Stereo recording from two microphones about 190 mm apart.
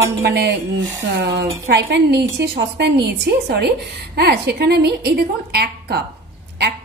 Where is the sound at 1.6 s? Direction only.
60° right (ahead or behind).